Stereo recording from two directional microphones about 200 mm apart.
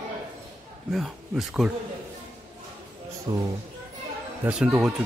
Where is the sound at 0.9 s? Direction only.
Centre (ahead or behind).